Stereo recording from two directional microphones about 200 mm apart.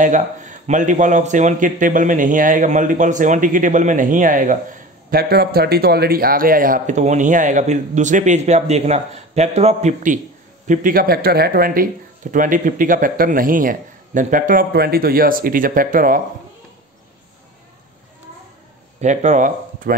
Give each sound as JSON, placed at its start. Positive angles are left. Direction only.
{"t": 0.0, "sound": "speech", "side_deg": -40}
{"t": 18.9, "sound": "speech", "side_deg": -35}